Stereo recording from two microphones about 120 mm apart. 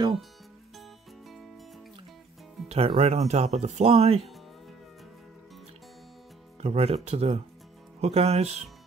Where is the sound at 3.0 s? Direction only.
65° right (ahead or behind).